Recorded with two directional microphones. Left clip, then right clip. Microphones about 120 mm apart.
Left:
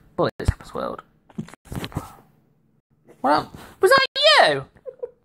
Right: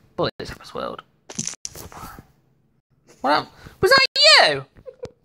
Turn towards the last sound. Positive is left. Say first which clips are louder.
# right 2 dB
turn(degrees=5)  # may be behind; listen again after turning